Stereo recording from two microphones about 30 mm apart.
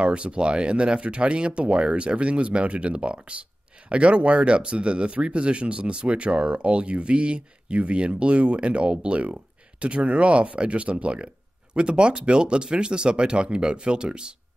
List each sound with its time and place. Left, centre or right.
0.0 s speech: right
11.7 s speech: right